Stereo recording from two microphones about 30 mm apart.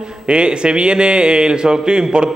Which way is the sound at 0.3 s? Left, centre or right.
Right.